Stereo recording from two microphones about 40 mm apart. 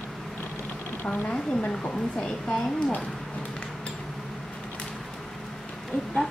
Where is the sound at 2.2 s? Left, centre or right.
Centre.